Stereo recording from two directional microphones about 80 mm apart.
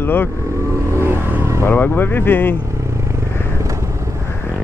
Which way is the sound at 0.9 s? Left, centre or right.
Right.